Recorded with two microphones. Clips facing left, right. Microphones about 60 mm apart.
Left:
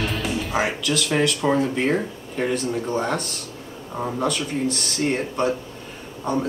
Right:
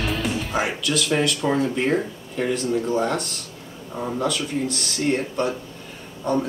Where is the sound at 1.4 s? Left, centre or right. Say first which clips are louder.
Left 3 dB; left.